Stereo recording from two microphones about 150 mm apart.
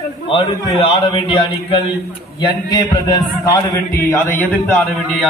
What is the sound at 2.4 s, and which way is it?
A man's voice, 25° left (ahead or behind).